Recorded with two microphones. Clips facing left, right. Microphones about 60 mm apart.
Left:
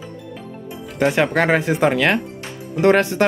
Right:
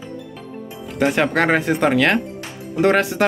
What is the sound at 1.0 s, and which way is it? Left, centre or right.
Speech, centre.